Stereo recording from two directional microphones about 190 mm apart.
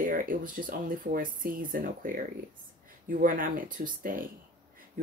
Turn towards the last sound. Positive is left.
turn(degrees=-45)  # may be behind; listen again after turning